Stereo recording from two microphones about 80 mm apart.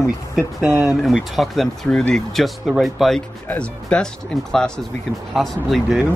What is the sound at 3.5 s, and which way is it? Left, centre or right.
Speech, centre.